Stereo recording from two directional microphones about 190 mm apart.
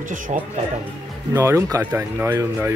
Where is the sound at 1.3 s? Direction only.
15° right (ahead or behind).